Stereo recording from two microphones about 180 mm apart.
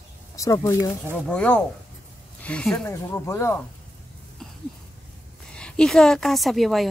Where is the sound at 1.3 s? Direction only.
5° left (ahead or behind).